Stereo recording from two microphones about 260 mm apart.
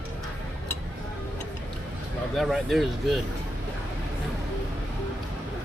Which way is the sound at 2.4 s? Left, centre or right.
Centre.